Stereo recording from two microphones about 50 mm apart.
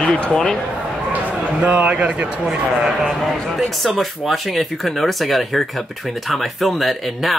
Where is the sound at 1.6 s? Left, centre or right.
Right.